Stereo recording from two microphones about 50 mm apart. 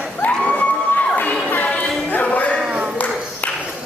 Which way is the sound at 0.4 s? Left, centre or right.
Left.